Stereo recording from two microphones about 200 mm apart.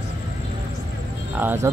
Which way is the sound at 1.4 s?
10° right (ahead or behind).